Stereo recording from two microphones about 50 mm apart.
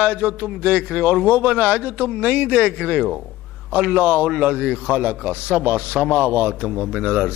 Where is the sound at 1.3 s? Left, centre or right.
Right.